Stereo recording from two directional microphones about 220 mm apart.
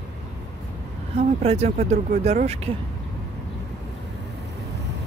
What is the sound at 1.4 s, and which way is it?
Speech, 30° right (ahead or behind).